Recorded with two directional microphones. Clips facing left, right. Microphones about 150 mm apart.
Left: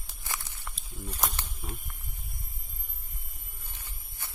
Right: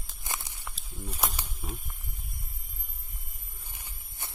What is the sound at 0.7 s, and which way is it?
Speech, 10° right (ahead or behind).